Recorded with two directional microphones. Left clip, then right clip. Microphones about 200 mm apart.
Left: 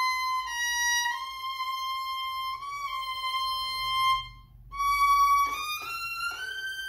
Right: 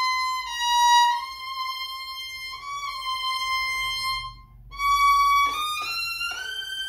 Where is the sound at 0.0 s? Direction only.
Centre (ahead or behind).